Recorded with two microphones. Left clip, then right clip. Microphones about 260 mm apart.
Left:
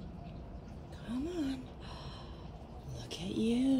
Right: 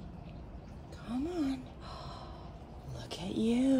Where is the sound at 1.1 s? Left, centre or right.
Centre.